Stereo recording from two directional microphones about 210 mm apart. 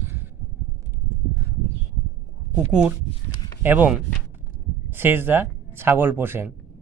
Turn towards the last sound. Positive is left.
turn(degrees=-10)  # may be behind; listen again after turning